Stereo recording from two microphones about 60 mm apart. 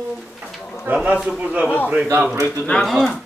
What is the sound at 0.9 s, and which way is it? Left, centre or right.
A man's voice, right.